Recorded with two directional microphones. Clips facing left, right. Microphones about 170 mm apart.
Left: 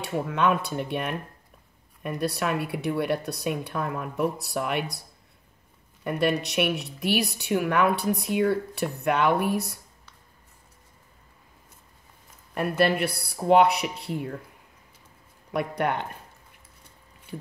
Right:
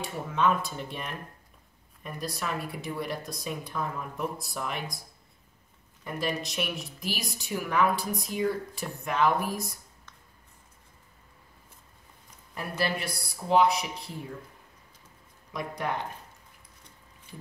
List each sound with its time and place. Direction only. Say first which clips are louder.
0.0 s speech: left 3 dB; 65° left (ahead or behind)
6.0 s speech: left 7 dB; 65° left (ahead or behind)
12.5 s speech: left 8 dB; 60° left (ahead or behind)
15.5 s speech: left 6 dB; 65° left (ahead or behind)
17.3 s speech: left 8 dB; 65° left (ahead or behind)